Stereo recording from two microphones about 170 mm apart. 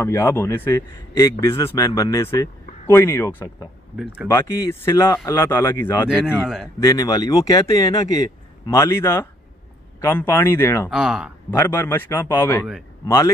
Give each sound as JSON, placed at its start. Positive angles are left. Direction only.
{"t": 0.0, "sound": "speech", "side_deg": 15}
{"t": 3.9, "sound": "speech", "side_deg": -5}
{"t": 4.3, "sound": "speech", "side_deg": 15}
{"t": 6.0, "sound": "speech", "side_deg": -5}
{"t": 6.8, "sound": "speech", "side_deg": 20}
{"t": 10.9, "sound": "speech", "side_deg": -5}
{"t": 11.5, "sound": "speech", "side_deg": 10}